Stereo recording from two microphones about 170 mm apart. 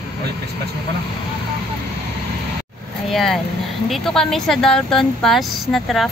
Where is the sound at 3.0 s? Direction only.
Centre (ahead or behind).